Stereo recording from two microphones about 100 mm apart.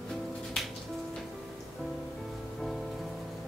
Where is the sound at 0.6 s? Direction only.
Centre (ahead or behind).